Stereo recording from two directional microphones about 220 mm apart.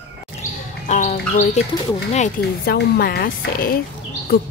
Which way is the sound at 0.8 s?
35° left (ahead or behind).